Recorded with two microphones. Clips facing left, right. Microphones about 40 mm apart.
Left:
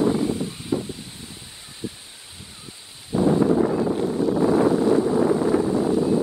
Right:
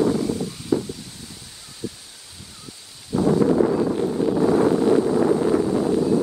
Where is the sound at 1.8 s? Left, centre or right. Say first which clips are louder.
Right 1 dB; left.